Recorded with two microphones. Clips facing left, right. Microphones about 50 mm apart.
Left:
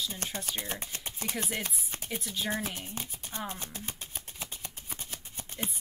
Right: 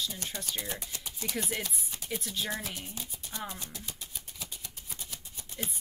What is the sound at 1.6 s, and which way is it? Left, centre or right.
Chopping, left.